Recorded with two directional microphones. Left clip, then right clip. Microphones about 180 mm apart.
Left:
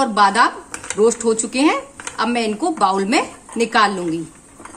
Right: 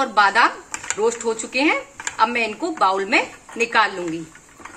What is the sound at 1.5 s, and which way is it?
Speech, 40° left (ahead or behind).